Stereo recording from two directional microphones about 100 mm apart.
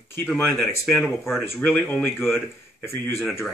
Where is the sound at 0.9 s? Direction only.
Centre (ahead or behind).